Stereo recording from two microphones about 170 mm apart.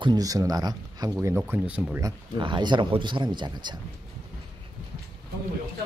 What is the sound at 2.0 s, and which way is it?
Speech, 25° right (ahead or behind).